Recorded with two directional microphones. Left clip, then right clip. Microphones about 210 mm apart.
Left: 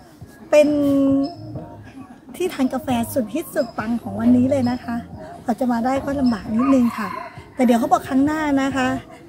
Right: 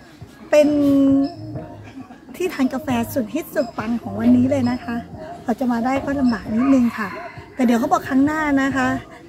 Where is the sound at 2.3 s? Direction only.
10° left (ahead or behind).